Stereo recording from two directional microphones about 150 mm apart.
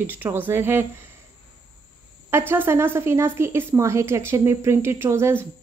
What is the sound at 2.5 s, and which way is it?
A woman's voice, 15° right (ahead or behind).